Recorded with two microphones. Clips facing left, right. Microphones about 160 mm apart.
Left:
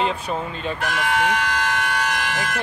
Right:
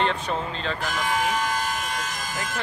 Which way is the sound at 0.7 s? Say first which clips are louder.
Left 4 dB; 70° left (ahead or behind).